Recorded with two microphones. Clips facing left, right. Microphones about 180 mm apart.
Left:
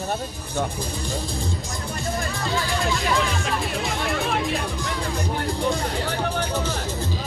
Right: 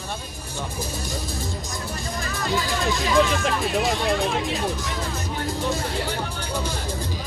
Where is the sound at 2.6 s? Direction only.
20° right (ahead or behind).